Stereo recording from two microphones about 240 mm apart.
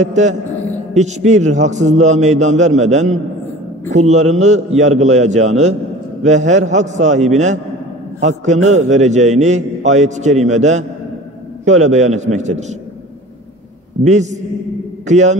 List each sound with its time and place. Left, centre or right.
0.0 s a man's voice: right
14.0 s a man's voice: right